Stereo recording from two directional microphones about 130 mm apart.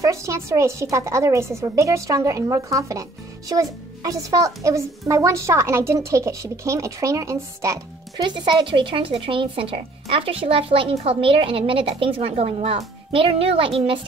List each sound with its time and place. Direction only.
0.0 s a woman's voice: 25° right (ahead or behind)
8.3 s speech: 40° right (ahead or behind)